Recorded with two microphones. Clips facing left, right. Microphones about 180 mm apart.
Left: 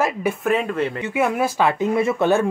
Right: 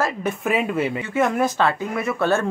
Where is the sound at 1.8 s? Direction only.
25° left (ahead or behind).